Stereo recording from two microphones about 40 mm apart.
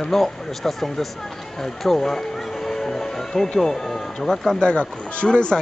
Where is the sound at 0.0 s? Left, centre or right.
Centre.